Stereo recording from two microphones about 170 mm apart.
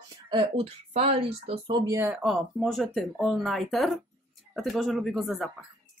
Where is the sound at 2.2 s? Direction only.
Centre (ahead or behind).